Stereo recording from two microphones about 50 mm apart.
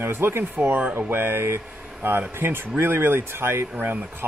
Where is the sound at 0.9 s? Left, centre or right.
Right.